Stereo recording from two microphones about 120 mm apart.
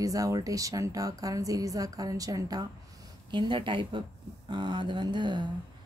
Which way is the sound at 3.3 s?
40° right (ahead or behind).